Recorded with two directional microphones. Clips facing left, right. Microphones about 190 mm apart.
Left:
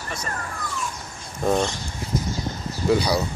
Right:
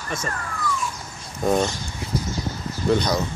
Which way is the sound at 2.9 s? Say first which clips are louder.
Even; 10° left (ahead or behind).